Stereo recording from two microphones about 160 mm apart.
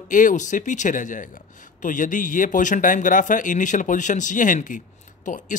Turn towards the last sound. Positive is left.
turn(degrees=55)  # may be behind; listen again after turning